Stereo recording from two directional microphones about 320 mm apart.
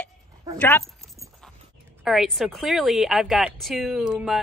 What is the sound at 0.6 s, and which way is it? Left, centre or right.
Speech, centre.